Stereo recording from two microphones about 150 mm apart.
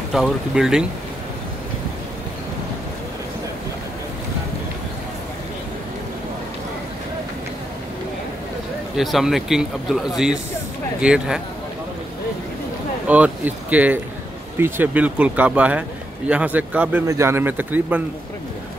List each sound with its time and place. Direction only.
0.1 s a man's voice: centre (ahead or behind)
8.9 s a man's voice: centre (ahead or behind)
13.0 s speech: 10° right (ahead or behind)